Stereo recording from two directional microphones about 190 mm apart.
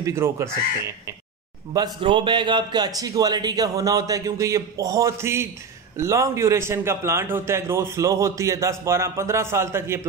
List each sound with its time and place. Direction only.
0.0 s a man's voice: 15° right (ahead or behind)
2.0 s a man's voice: 25° right (ahead or behind)